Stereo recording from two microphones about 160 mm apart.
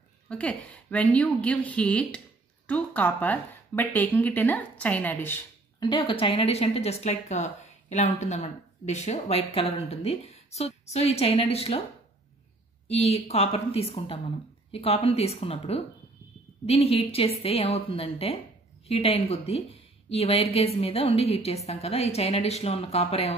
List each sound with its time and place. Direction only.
0.3 s a woman's voice: 5° left (ahead or behind)
5.8 s speech: 30° left (ahead or behind)
12.8 s speech: 40° left (ahead or behind)